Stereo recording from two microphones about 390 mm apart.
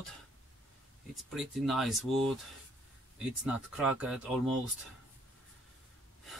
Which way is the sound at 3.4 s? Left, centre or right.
Centre.